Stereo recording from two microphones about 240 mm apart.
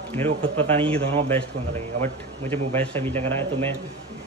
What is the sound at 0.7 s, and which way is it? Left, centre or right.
Speech, right.